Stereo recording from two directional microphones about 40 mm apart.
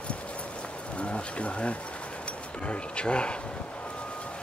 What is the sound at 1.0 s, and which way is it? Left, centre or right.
Speech, left.